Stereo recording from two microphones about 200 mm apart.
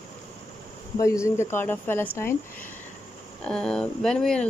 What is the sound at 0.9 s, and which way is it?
Speech, 15° left (ahead or behind).